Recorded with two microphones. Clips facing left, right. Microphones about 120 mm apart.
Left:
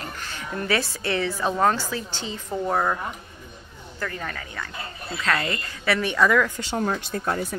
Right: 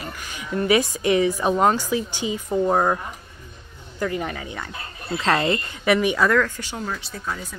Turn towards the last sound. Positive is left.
turn(degrees=60)  # may be behind; listen again after turning